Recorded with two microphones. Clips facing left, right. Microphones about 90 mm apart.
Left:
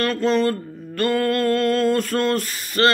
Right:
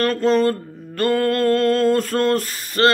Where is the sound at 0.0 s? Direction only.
35° right (ahead or behind).